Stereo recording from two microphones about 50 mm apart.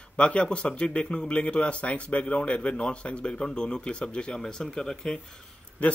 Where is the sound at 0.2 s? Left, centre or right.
Left.